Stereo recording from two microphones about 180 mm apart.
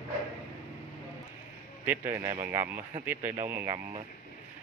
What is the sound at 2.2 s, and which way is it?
Speech, 30° right (ahead or behind).